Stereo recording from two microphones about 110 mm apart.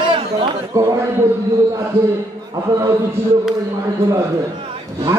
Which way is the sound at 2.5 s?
30° right (ahead or behind).